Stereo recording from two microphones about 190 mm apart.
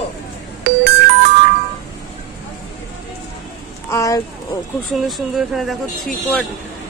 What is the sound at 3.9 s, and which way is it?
Speech, 15° left (ahead or behind).